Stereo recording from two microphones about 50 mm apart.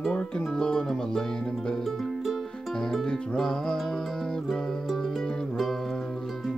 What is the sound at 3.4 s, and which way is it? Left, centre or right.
Music, centre.